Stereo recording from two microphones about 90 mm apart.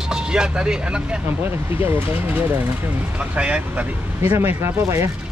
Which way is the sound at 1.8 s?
25° right (ahead or behind).